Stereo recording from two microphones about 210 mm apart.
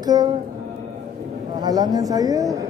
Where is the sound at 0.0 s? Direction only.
20° right (ahead or behind).